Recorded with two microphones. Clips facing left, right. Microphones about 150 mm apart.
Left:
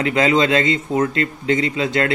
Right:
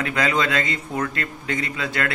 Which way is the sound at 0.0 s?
25° left (ahead or behind).